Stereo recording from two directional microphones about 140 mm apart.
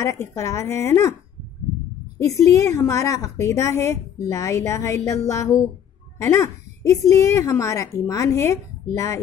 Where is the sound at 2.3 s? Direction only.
20° left (ahead or behind).